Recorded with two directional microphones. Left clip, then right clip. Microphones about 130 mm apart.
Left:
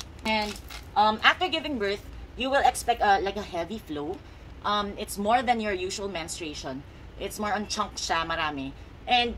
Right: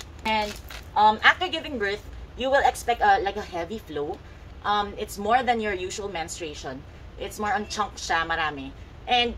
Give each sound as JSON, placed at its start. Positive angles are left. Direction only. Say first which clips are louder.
{"t": 0.9, "sound": "a woman's voice", "louder": "right 3 dB", "side_deg": 20}